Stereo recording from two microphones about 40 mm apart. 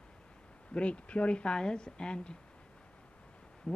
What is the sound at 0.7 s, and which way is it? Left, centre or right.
A woman's voice, left.